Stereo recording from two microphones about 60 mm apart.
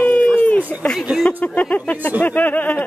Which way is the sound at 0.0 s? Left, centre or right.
Left.